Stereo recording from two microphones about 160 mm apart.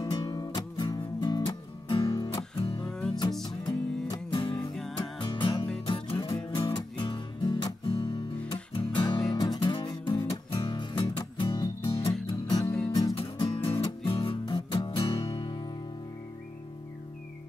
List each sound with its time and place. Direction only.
0.0 s music: 25° left (ahead or behind)
2.8 s music: 5° left (ahead or behind)
3.4 s music: 25° left (ahead or behind)
15.1 s music: 20° left (ahead or behind)